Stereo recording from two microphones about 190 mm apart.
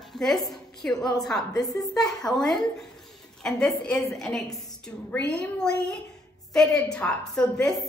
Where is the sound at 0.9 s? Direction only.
20° left (ahead or behind).